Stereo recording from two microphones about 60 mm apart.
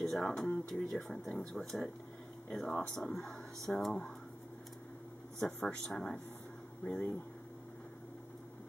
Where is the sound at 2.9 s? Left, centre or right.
Centre.